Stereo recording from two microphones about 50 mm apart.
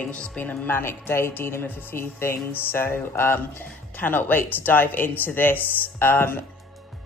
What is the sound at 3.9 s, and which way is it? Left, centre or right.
Speech, left.